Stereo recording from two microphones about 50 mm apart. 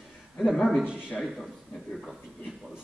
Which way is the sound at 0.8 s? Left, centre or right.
Right.